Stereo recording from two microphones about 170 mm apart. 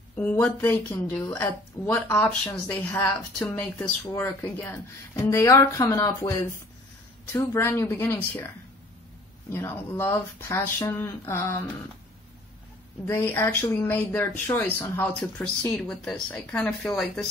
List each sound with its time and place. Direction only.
0.1 s speech: 10° left (ahead or behind)
7.3 s speech: 15° left (ahead or behind)
9.5 s speech: 15° left (ahead or behind)
13.0 s speech: 10° left (ahead or behind)